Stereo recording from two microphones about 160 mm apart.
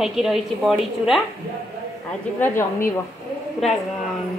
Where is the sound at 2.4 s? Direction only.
15° left (ahead or behind).